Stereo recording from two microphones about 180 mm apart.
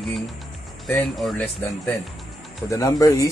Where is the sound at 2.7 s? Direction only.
20° left (ahead or behind).